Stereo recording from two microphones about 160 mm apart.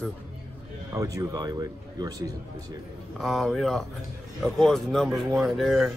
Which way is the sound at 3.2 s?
Centre (ahead or behind).